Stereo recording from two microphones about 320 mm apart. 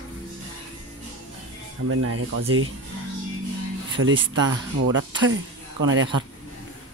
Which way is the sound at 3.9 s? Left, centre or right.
Right.